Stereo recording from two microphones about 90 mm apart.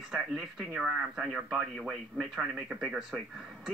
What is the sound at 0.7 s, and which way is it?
Speech, 10° right (ahead or behind).